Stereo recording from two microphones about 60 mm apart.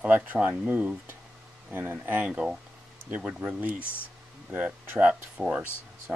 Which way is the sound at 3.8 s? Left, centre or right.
Left.